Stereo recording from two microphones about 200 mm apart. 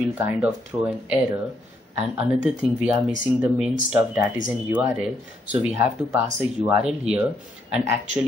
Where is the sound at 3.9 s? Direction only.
5° right (ahead or behind).